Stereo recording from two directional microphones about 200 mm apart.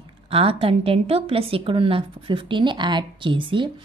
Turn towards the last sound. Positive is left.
turn(degrees=-25)  # may be behind; listen again after turning